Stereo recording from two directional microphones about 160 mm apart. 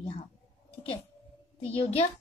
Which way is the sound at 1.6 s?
35° left (ahead or behind).